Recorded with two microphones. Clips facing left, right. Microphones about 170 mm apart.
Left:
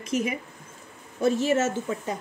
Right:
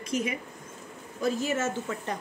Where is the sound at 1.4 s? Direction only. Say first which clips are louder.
Left 5 dB; 25° left (ahead or behind).